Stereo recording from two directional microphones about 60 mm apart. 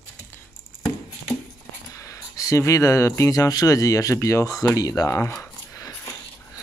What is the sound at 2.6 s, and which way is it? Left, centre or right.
Speech, left.